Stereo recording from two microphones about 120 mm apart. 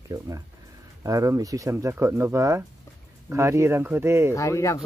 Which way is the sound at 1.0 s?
30° right (ahead or behind).